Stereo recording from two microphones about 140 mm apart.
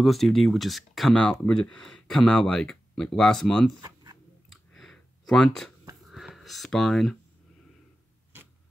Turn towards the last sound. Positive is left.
turn(degrees=0)  # may be behind; listen again after turning